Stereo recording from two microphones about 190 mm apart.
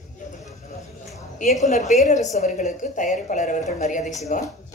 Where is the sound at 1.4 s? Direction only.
40° left (ahead or behind).